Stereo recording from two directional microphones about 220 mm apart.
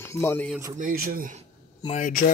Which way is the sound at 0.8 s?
40° right (ahead or behind).